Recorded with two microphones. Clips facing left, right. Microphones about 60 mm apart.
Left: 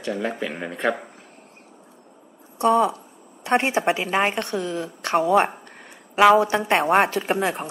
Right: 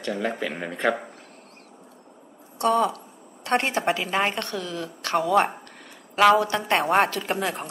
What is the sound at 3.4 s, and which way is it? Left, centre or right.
A woman's voice, centre.